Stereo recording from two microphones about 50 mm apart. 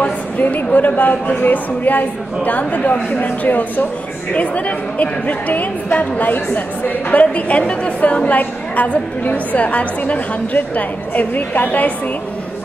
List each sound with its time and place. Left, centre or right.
0.4 s a woman's voice: left